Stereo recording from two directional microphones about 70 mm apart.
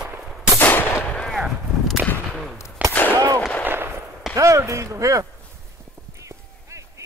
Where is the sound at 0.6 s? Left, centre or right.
Left.